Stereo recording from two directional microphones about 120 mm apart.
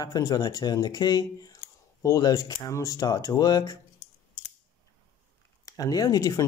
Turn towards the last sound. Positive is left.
turn(degrees=30)  # may be behind; listen again after turning